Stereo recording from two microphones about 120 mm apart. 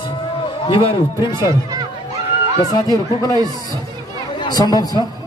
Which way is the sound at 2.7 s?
30° left (ahead or behind).